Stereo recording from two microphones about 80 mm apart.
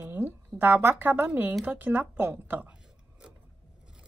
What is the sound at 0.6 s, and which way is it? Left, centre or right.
Speech, right.